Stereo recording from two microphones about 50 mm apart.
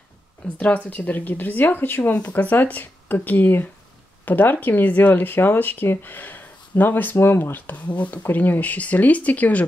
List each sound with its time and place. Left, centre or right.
0.6 s speech: left
7.2 s speech: left